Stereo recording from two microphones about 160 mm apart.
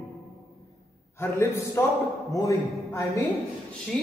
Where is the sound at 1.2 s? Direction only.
15° left (ahead or behind).